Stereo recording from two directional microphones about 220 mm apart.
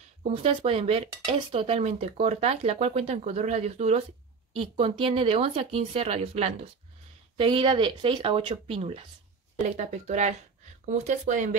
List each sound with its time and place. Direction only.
0.3 s speech: 25° right (ahead or behind)